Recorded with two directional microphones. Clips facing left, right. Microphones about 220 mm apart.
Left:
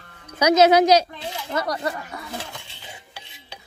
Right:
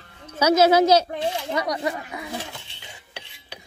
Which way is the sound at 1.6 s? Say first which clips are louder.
Right 1 dB; 15° right (ahead or behind).